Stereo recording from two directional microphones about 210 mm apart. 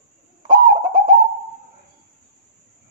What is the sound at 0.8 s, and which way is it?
Bird, 20° right (ahead or behind).